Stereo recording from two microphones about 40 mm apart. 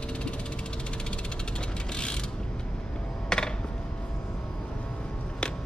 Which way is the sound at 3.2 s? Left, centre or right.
Centre.